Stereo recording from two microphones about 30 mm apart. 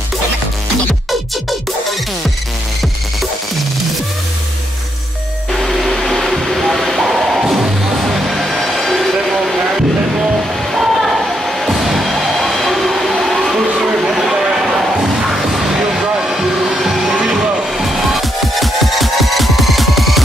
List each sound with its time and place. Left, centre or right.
5.6 s a sound: centre
8.1 s music: centre
10.7 s train: centre
11.5 s music: centre
13.6 s a sound: centre
16.3 s music: centre